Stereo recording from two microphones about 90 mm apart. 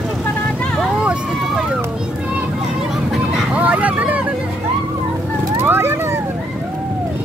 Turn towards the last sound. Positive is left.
turn(degrees=-25)  # may be behind; listen again after turning